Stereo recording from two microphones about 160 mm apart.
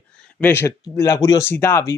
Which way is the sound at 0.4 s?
15° left (ahead or behind).